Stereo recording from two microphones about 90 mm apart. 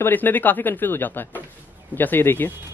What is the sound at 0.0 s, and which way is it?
Speech, 20° left (ahead or behind).